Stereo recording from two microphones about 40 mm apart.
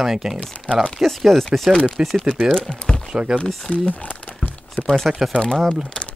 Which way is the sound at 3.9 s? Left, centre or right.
Left.